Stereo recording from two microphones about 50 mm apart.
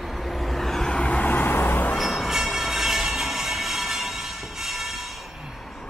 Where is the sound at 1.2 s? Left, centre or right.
Left.